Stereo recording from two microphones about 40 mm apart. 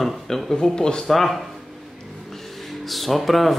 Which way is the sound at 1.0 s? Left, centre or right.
Centre.